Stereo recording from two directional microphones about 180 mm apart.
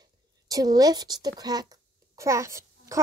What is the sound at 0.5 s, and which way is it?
A woman's voice, 20° right (ahead or behind).